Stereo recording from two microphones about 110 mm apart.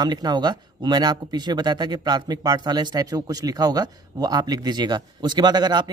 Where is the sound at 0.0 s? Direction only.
40° right (ahead or behind).